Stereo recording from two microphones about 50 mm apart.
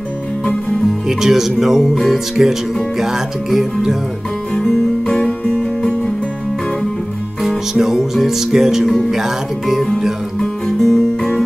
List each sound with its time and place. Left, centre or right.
1.0 s speech: centre
5.0 s music: centre
7.7 s speech: centre
10.8 s music: centre